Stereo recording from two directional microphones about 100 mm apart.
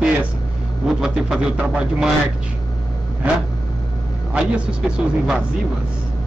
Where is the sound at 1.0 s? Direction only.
5° right (ahead or behind).